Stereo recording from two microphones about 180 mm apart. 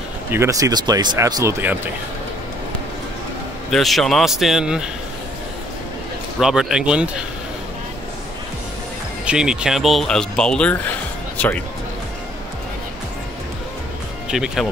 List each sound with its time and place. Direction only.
0.3 s speech: 15° right (ahead or behind)
3.7 s speech: centre (ahead or behind)
6.4 s speech: 5° right (ahead or behind)
9.2 s speech: 5° right (ahead or behind)
14.3 s speech: centre (ahead or behind)